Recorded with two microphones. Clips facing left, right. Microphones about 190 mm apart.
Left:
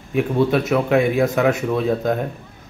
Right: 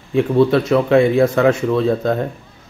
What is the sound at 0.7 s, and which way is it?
Speech, 10° left (ahead or behind).